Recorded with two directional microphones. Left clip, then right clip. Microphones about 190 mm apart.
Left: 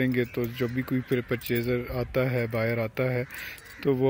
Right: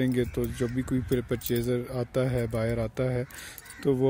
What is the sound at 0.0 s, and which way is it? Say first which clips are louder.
Speech: left 1 dB; 15° right (ahead or behind).